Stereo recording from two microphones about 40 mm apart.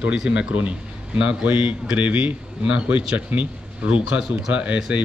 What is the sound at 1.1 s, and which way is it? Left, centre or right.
A man's voice, right.